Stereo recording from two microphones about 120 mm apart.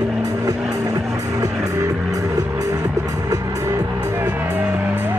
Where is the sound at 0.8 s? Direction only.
30° right (ahead or behind).